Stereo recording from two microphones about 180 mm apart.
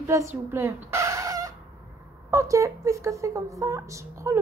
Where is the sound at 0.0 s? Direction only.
15° right (ahead or behind).